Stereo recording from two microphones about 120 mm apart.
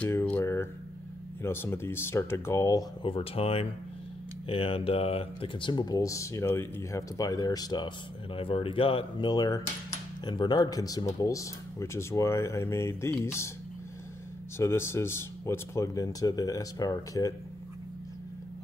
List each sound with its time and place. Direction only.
0.1 s a sound: 20° left (ahead or behind)
1.4 s speech: 20° left (ahead or behind)
3.0 s speech: 45° left (ahead or behind)
8.4 s speech: 50° left (ahead or behind); by 13.5 s 20° left (ahead or behind)
14.6 s speech: 20° left (ahead or behind)